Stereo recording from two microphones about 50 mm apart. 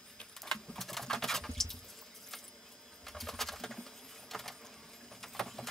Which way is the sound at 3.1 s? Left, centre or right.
Centre.